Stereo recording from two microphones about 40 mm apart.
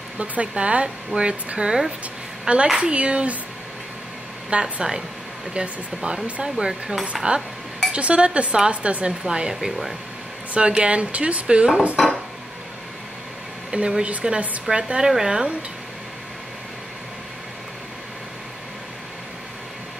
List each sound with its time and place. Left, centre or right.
0.2 s a woman's voice: right
4.5 s speech: right
6.4 s speech: centre
7.2 s speech: right
9.2 s speech: centre
10.5 s speech: right
12.0 s dishes: centre
13.7 s speech: right